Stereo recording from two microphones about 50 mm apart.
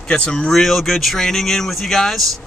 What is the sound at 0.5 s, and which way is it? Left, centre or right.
Speech, centre.